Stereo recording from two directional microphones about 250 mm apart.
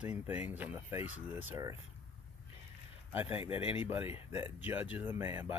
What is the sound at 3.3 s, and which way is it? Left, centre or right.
Speech, left.